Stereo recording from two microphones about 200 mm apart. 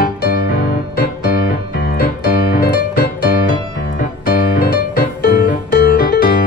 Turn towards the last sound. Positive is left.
turn(degrees=45)  # may be behind; listen again after turning